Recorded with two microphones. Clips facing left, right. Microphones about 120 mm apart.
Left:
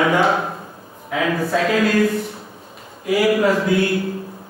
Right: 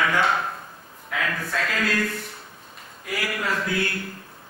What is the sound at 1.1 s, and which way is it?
Speech, 5° left (ahead or behind).